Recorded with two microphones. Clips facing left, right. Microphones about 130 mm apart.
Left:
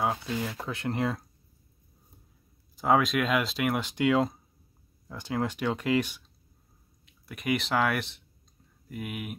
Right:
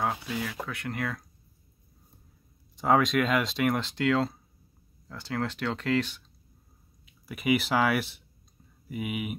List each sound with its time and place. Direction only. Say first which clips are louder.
0.4 s speech: left 1 dB; 25° left (ahead or behind)
2.7 s speech: right 1 dB; centre (ahead or behind)
3.8 s speech: left 1 dB; 15° left (ahead or behind)
7.1 s speech: right 3 dB; 5° right (ahead or behind)